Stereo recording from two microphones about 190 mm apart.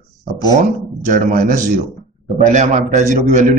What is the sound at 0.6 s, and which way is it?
A man's voice, 40° right (ahead or behind).